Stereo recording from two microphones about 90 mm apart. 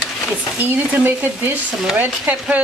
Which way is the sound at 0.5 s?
25° right (ahead or behind).